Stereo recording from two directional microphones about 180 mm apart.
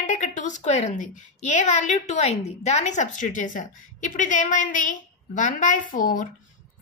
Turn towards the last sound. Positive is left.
turn(degrees=45)  # may be behind; listen again after turning